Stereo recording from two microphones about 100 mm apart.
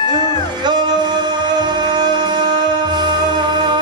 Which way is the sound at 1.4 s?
45° right (ahead or behind).